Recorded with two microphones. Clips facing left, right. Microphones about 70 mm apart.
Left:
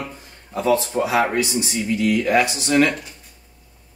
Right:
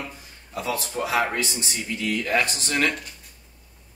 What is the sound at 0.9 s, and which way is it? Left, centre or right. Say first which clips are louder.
Speech: left 5 dB; centre.